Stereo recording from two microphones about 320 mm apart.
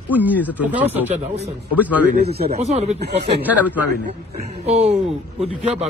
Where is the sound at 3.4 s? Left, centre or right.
Centre.